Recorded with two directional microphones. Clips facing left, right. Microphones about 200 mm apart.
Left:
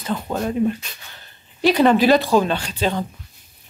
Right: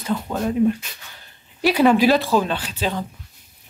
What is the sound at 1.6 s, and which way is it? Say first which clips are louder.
Speech: left 1 dB; 10° right (ahead or behind).